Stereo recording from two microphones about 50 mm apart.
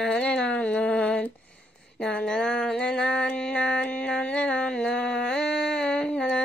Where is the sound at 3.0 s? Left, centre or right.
Centre.